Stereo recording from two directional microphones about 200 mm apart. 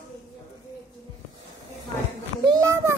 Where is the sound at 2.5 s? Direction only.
15° right (ahead or behind).